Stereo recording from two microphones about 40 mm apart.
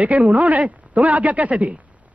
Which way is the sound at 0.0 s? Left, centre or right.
Right.